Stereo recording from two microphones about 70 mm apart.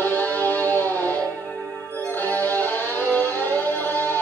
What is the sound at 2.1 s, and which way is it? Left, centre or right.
Music, left.